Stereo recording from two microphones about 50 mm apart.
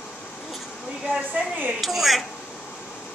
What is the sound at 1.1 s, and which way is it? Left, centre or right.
Speech, right.